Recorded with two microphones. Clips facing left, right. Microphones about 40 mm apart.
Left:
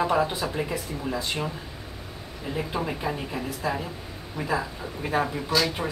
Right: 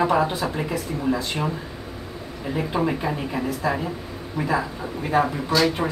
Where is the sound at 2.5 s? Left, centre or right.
Centre.